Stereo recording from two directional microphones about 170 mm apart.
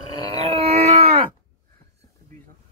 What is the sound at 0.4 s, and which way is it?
Wail, 35° right (ahead or behind).